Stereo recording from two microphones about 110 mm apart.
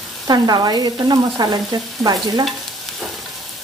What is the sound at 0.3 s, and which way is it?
Frying, 40° right (ahead or behind).